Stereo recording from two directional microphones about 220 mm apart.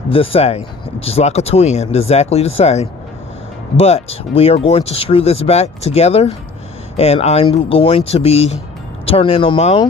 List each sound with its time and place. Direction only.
0.1 s speech: 25° left (ahead or behind)